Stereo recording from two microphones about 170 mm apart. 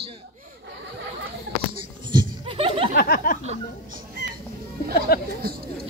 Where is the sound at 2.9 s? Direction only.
60° left (ahead or behind).